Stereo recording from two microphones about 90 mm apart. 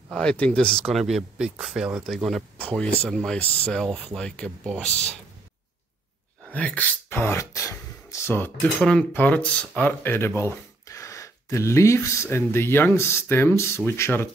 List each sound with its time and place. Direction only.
0.1 s speech: 10° left (ahead or behind)
6.5 s speech: 15° left (ahead or behind)
8.8 s speech: 15° left (ahead or behind)